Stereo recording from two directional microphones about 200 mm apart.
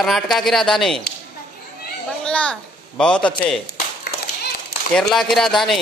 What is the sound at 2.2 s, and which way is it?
A child's voice, 5° left (ahead or behind).